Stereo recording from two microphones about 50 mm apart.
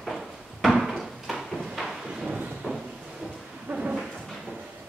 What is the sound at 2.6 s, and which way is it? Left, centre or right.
Thunder, centre.